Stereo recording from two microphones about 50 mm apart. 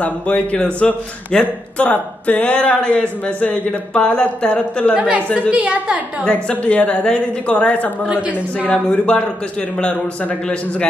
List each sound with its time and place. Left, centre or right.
0.0 s speech: left
4.9 s a woman's voice: right
6.5 s speech: left
9.0 s speech: left